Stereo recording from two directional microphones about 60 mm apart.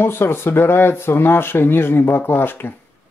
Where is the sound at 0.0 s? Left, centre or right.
Left.